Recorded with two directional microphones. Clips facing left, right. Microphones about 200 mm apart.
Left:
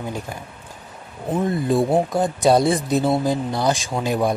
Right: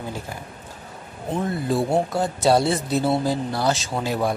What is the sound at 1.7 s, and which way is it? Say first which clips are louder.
Speech: left 2 dB; 20° left (ahead or behind).